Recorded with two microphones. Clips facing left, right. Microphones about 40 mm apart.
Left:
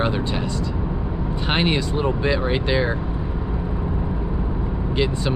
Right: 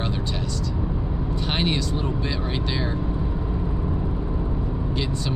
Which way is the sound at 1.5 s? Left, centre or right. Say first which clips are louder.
Left 4 dB; left.